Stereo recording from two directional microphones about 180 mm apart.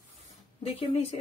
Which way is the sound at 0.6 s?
30° left (ahead or behind).